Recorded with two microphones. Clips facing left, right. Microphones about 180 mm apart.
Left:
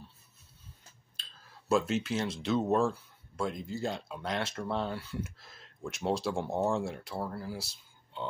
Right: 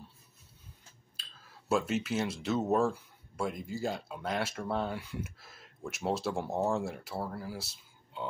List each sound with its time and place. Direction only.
1.7 s speech: 5° right (ahead or behind)